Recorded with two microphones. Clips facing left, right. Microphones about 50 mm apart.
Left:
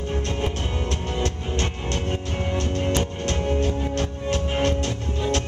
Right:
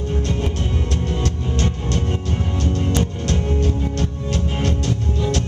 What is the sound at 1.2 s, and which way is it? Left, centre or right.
Music, left.